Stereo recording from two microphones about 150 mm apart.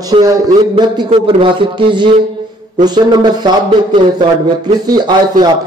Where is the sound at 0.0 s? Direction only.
25° right (ahead or behind).